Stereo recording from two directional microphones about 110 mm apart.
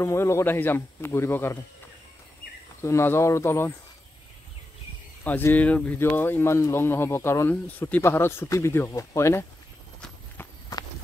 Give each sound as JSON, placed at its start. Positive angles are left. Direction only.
{"t": 0.0, "sound": "speech", "side_deg": 25}
{"t": 2.8, "sound": "speech", "side_deg": 25}
{"t": 5.2, "sound": "speech", "side_deg": 15}
{"t": 10.7, "sound": "walk", "side_deg": 35}